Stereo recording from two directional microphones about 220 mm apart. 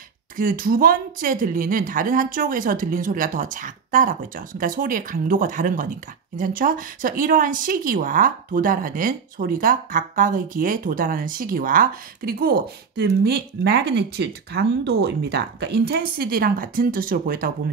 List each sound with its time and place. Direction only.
0.4 s speech: 40° right (ahead or behind)